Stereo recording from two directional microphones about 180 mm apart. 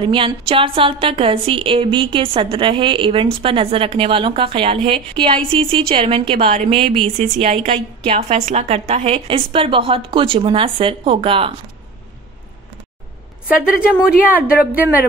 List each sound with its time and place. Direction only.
0.0 s a woman's voice: 30° right (ahead or behind)
14.2 s a woman's voice: 10° right (ahead or behind)